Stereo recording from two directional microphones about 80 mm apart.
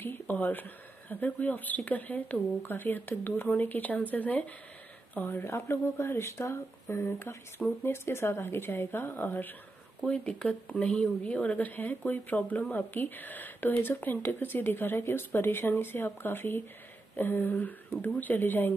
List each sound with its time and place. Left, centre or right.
0.0 s speech: left